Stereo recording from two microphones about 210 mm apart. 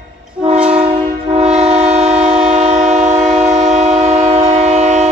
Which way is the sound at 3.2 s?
5° right (ahead or behind).